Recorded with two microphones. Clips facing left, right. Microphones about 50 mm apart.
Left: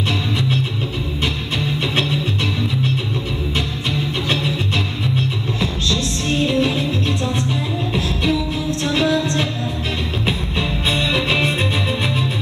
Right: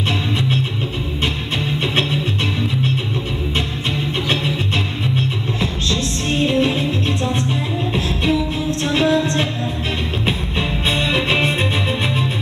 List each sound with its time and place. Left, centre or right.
1.2 s music: centre
3.9 s music: centre
10.9 s music: centre